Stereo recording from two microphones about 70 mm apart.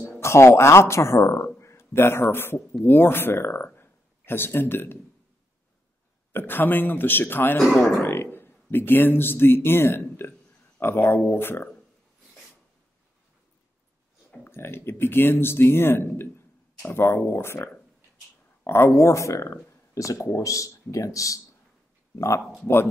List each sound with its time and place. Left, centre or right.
0.0 s speech: left
1.6 s a sound: left
2.2 s speech: left
6.3 s speech: left
14.5 s speech: left